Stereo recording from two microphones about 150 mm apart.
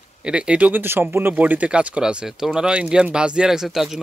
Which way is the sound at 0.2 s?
5° right (ahead or behind).